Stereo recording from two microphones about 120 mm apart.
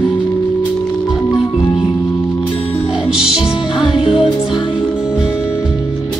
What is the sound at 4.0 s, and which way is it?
Music, 50° left (ahead or behind).